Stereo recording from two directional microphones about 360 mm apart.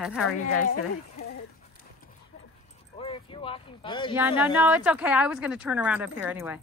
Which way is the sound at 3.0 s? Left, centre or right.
Centre.